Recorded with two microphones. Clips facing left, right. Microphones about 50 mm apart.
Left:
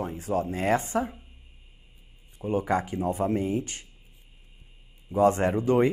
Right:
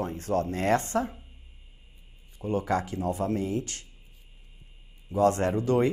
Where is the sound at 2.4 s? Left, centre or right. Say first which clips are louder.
Left 1 dB; centre.